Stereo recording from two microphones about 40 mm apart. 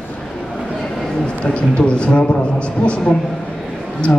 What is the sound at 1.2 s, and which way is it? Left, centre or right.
A man's voice, left.